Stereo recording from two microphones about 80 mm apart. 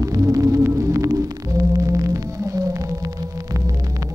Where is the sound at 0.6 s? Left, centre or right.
Right.